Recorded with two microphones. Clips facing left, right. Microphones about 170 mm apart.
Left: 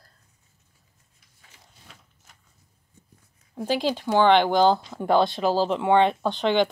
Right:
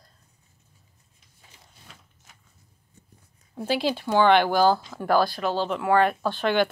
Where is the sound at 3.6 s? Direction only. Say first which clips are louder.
Left 1 dB; 15° left (ahead or behind).